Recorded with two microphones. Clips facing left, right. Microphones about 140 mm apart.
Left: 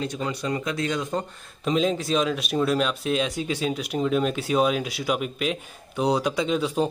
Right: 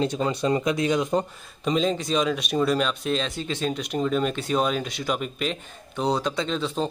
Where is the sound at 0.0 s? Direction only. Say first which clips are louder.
Right 4 dB; 25° right (ahead or behind).